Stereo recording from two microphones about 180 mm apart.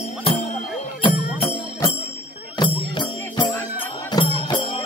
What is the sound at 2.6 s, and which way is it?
Music, 25° left (ahead or behind).